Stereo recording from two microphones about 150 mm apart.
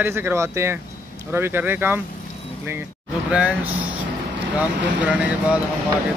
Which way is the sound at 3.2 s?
10° right (ahead or behind).